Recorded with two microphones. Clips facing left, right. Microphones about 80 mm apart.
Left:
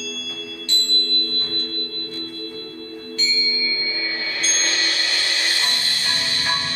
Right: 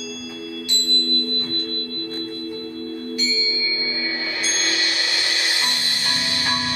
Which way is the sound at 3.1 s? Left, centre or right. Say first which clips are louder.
Right 1 dB; centre.